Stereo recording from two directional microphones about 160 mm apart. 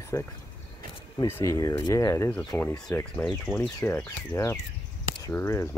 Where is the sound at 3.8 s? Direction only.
15° left (ahead or behind).